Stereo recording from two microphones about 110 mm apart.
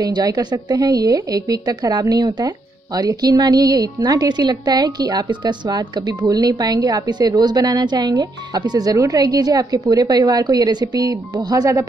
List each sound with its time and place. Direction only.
0.0 s a woman's voice: 35° right (ahead or behind)